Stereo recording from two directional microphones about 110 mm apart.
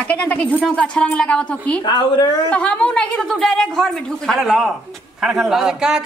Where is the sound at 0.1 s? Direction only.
10° left (ahead or behind).